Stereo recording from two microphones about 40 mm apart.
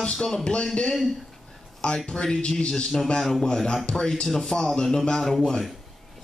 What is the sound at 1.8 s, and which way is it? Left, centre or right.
A man's voice, left.